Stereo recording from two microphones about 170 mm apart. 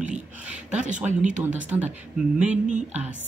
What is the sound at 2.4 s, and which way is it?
Speech, 45° right (ahead or behind).